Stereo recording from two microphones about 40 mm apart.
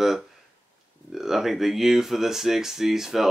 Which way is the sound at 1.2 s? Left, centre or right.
Centre.